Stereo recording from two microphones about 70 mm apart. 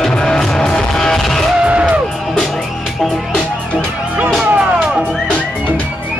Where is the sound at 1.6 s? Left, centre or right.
Centre.